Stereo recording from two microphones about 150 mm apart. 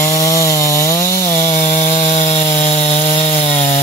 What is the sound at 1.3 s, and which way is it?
Chainsaw, 55° left (ahead or behind).